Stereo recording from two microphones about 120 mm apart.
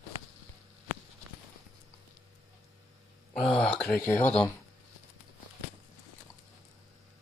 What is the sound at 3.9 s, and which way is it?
Speech, 20° left (ahead or behind).